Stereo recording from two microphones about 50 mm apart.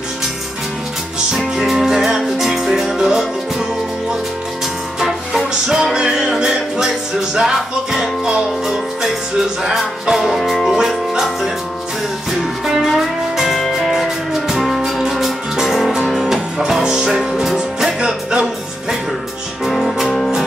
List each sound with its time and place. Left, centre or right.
1.6 s music: centre
5.0 s music: centre
12.3 s music: centre
19.6 s music: centre